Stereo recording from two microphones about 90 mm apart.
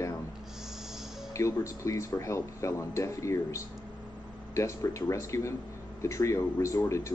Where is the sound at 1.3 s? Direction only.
35° left (ahead or behind).